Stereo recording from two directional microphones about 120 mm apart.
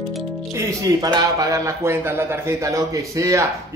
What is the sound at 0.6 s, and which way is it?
A man's voice, 30° right (ahead or behind).